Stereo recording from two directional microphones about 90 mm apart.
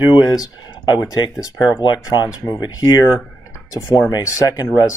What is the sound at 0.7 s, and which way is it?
Speech, 55° left (ahead or behind).